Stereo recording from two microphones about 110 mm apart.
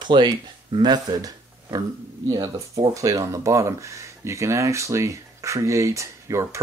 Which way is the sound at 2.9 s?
30° right (ahead or behind).